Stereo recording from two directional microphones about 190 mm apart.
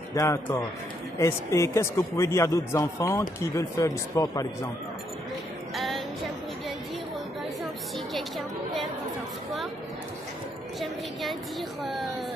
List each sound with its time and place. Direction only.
0.1 s a man's voice: 15° left (ahead or behind)
5.8 s music: centre (ahead or behind)
7.6 s chatter: centre (ahead or behind)
11.8 s a sound: centre (ahead or behind)